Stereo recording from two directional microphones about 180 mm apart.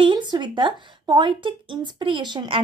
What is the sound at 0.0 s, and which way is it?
Speech, 25° right (ahead or behind).